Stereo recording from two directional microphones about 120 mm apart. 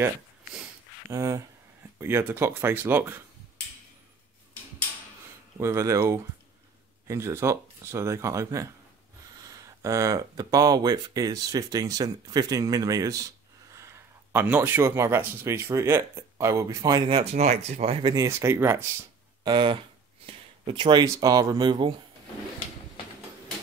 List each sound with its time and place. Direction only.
1.1 s speech: 25° right (ahead or behind)
5.6 s speech: 25° right (ahead or behind)
9.8 s speech: 25° right (ahead or behind)
17.1 s speech: 55° right (ahead or behind)
17.9 s speech: 35° right (ahead or behind); by 18.9 s 20° right (ahead or behind)
19.4 s speech: 40° right (ahead or behind)